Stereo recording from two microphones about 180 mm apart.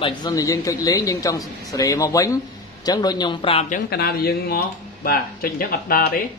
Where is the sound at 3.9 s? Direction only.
60° left (ahead or behind).